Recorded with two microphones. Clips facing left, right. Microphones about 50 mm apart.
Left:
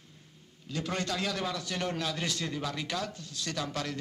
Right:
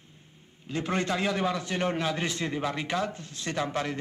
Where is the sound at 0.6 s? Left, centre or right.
Right.